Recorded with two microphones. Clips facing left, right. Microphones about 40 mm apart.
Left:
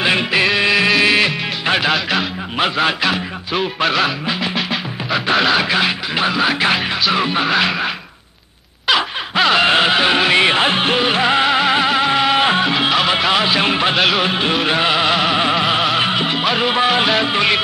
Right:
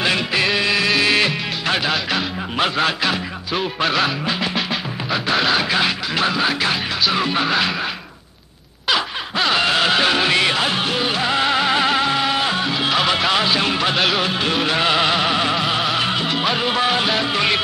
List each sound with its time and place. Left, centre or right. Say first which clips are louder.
0.3 s music of bollywood: left 3 dB; centre
0.7 s music: left 4 dB; centre
5.1 s speech: left 3 dB; centre
6.7 s music: left 3 dB; centre
8.8 s a sound: left 3 dB; centre
9.7 s music: left 3 dB; left
11.4 s music: left 3 dB; centre
12.4 s music: left 5 dB; left
13.2 s music: left 2 dB; centre
13.6 s music: left 3 dB; left
13.9 s speech: left 3 dB; centre
14.2 s music: left 3 dB; left; by 15.3 s centre
15.3 s music: left 3 dB; centre
16.4 s music: left 3 dB; centre